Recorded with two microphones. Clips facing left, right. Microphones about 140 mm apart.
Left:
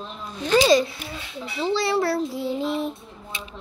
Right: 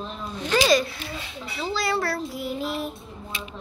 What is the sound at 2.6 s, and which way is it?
Speech, 20° left (ahead or behind).